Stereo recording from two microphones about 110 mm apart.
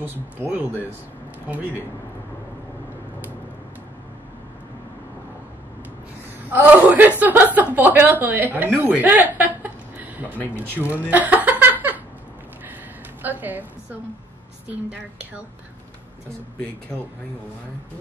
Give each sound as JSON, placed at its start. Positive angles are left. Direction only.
{"t": 0.0, "sound": "speech", "side_deg": -15}
{"t": 6.5, "sound": "speech", "side_deg": -15}
{"t": 8.8, "sound": "a sound", "side_deg": -15}
{"t": 10.3, "sound": "speech", "side_deg": 15}
{"t": 10.9, "sound": "speech", "side_deg": -15}
{"t": 11.6, "sound": "a sound", "side_deg": -15}
{"t": 13.2, "sound": "a woman's voice", "side_deg": -15}